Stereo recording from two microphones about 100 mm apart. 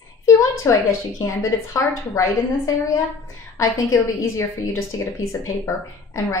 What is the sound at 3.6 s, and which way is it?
A woman's voice, 30° left (ahead or behind).